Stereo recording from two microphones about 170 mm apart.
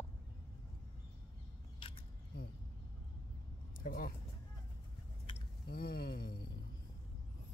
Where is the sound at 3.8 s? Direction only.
60° left (ahead or behind).